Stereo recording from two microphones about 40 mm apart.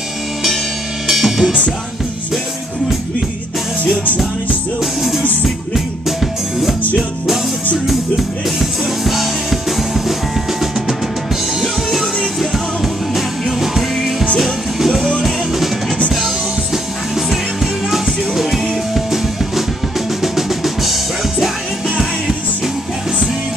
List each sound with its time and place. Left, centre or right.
1.0 s drum kit: centre
5.4 s music: centre
7.8 s music: centre
16.7 s music: centre
20.2 s drum kit: centre